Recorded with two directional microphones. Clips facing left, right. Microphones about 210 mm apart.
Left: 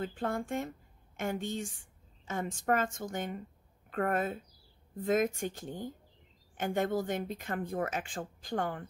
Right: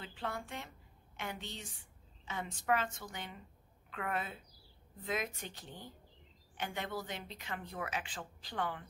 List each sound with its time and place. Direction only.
0.0 s a woman's voice: 45° left (ahead or behind)